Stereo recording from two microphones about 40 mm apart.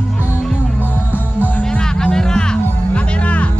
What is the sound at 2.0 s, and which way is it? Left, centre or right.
Music, centre.